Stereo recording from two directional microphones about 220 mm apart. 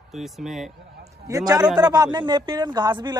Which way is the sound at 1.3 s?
15° right (ahead or behind).